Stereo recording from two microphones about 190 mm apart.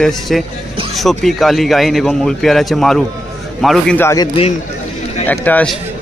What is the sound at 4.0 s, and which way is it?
Speech, 15° left (ahead or behind).